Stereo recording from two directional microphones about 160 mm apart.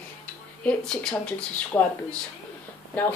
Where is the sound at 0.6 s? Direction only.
10° left (ahead or behind).